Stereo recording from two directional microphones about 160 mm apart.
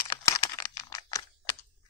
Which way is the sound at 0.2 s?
20° left (ahead or behind).